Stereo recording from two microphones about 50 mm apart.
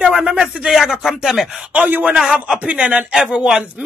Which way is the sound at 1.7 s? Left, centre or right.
Right.